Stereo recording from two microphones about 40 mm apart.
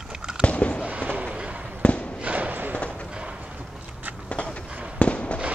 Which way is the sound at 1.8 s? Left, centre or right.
Left.